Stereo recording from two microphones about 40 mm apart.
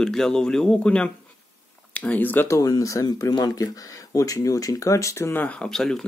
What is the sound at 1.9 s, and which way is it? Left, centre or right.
Speech, left.